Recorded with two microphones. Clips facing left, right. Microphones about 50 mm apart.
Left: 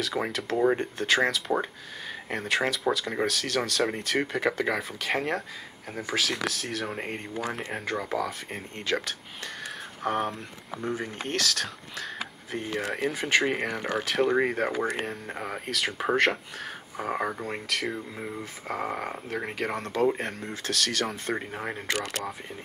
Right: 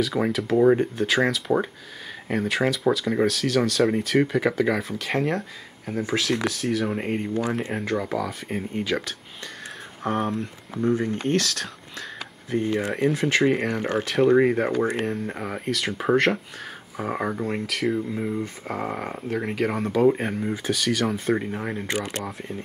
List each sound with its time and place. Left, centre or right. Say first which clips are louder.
0.0 s speech: right 6 dB; centre
12.2 s a sound: right 7 dB; centre
12.9 s speech: right 1 dB; centre
21.8 s speech: right 2 dB; centre